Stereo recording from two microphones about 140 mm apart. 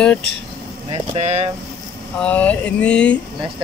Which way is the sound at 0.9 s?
45° right (ahead or behind).